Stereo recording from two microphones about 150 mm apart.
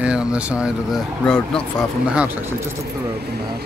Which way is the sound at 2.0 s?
10° right (ahead or behind).